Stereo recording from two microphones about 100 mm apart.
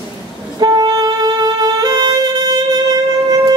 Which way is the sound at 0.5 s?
40° right (ahead or behind).